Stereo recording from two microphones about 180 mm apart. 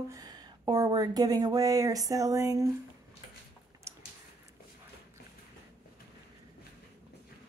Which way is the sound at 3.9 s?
15° right (ahead or behind).